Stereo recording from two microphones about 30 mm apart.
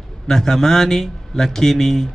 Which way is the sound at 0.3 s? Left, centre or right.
Centre.